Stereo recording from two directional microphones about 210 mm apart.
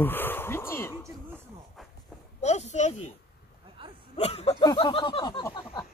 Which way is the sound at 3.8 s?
25° right (ahead or behind).